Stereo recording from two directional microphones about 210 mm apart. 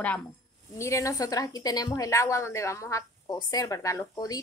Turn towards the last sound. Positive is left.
turn(degrees=15)  # may be behind; listen again after turning